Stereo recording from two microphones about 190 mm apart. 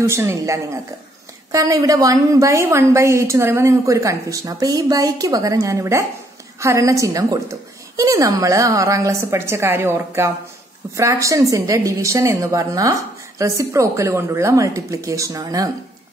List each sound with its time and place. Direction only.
0.0 s a woman's voice: 15° right (ahead or behind)